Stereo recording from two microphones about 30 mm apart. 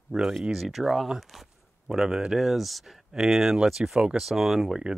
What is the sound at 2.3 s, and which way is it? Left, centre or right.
Speech, centre.